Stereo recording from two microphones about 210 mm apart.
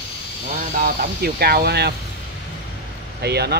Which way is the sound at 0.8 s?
45° right (ahead or behind).